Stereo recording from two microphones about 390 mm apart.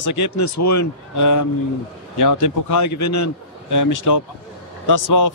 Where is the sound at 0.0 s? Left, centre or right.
Left.